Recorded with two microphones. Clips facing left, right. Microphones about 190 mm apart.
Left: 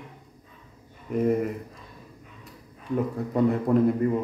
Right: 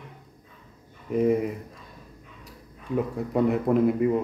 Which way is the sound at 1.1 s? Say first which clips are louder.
Right 1 dB; centre (ahead or behind).